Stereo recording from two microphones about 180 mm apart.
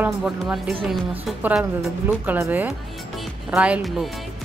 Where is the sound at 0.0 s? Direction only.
5° right (ahead or behind).